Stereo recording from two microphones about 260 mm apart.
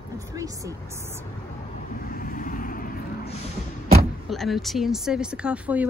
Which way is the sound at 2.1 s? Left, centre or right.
Left.